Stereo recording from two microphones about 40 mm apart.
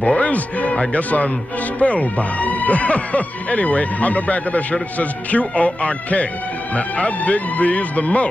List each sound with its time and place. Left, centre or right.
0.0 s speech: left